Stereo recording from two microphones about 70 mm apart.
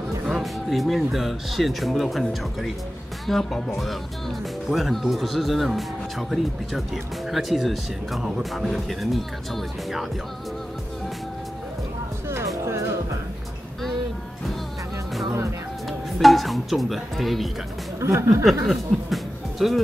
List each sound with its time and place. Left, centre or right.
0.3 s speech: centre
16.2 s speech: centre
18.0 s speech: right
18.7 s music: centre